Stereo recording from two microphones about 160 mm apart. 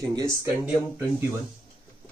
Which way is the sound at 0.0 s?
20° right (ahead or behind).